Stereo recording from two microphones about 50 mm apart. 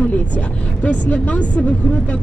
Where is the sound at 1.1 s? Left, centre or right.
Left.